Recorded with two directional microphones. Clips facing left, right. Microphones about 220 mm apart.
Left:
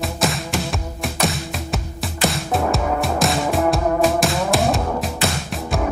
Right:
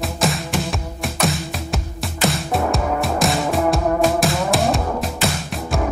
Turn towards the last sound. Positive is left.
turn(degrees=0)  # may be behind; listen again after turning